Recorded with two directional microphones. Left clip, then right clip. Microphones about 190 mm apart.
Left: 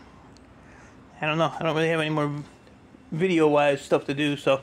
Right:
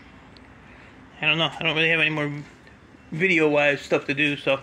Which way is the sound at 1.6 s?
35° left (ahead or behind).